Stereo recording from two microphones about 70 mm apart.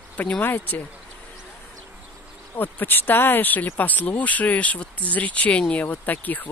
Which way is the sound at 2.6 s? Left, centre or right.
Left.